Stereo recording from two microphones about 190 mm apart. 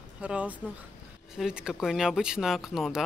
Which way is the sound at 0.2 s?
5° right (ahead or behind).